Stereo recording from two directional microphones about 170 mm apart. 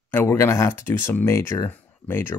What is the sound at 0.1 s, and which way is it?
Speech, 10° left (ahead or behind).